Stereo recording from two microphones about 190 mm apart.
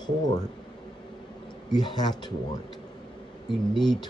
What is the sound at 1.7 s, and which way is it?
Speech, 20° left (ahead or behind).